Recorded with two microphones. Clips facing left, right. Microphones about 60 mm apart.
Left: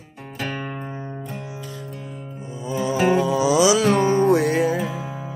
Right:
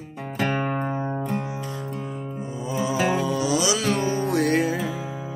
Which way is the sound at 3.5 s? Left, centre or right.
Left.